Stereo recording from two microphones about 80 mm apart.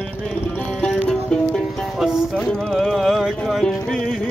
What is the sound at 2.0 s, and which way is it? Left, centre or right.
Music, centre.